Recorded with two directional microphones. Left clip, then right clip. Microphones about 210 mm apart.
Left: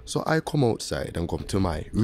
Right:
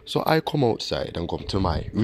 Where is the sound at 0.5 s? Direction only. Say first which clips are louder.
Right 2 dB; 10° left (ahead or behind).